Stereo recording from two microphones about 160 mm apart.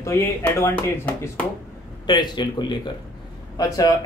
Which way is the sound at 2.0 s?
25° left (ahead or behind).